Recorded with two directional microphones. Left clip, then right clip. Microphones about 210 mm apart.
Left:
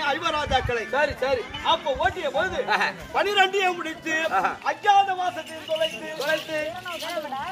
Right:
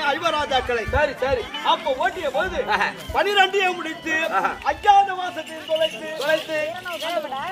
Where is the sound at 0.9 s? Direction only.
10° left (ahead or behind).